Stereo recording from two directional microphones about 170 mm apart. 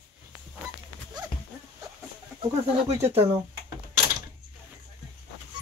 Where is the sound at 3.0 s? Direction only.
15° right (ahead or behind).